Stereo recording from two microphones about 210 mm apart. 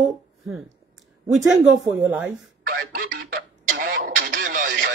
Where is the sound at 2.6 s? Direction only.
45° right (ahead or behind).